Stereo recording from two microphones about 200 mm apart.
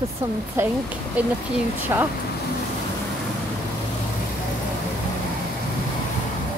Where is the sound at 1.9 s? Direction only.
15° right (ahead or behind).